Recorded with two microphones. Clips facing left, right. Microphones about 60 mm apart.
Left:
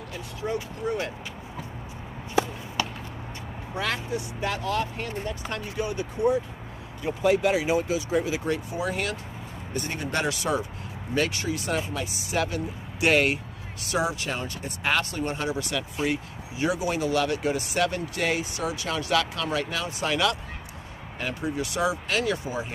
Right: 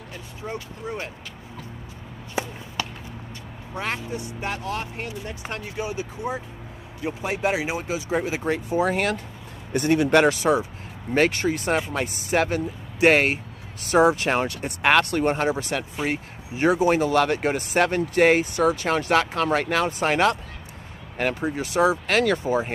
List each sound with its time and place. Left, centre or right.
3.9 s speech: right
9.7 s speech: right
10.2 s speech: right
11.1 s speech: right
21.2 s speech: right
21.5 s speech: right
22.0 s speech: right
22.4 s speech: right